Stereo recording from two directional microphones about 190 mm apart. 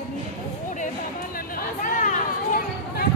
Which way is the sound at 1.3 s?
50° left (ahead or behind).